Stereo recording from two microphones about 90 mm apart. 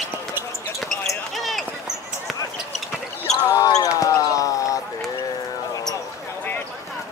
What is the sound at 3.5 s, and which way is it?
Basketball bounce, 40° left (ahead or behind).